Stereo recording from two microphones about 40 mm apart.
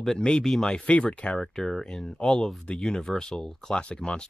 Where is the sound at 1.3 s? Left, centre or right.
Centre.